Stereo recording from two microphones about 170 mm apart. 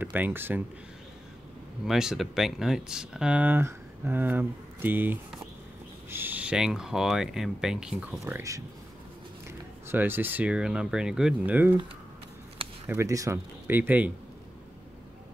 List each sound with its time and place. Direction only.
0.0 s speech: 10° right (ahead or behind)
1.9 s speech: centre (ahead or behind)
8.2 s speech: 15° right (ahead or behind)
9.8 s speech: 10° right (ahead or behind)
12.8 s speech: 15° right (ahead or behind)